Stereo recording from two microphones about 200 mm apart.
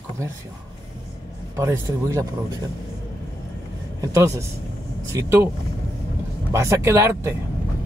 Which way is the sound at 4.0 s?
15° right (ahead or behind).